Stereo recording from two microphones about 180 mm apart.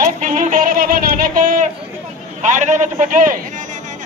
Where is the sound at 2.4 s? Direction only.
45° right (ahead or behind).